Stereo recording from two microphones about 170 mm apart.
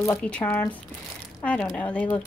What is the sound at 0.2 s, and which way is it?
A woman's voice, 10° left (ahead or behind).